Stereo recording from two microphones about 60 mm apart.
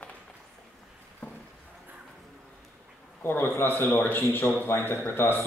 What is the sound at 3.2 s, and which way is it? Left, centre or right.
A man's voice, left.